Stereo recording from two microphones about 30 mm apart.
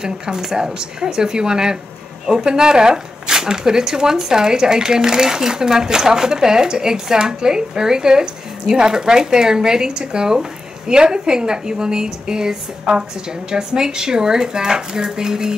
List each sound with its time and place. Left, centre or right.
0.0 s speech: right